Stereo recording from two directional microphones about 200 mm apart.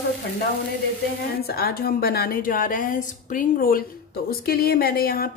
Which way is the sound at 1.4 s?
50° left (ahead or behind).